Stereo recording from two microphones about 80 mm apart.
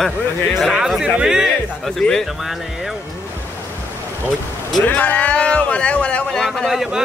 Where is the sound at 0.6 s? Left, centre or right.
Centre.